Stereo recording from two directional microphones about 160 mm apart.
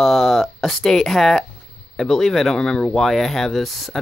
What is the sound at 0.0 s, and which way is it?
Speech, centre (ahead or behind).